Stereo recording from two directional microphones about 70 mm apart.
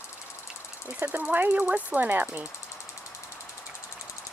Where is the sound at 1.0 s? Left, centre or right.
Right.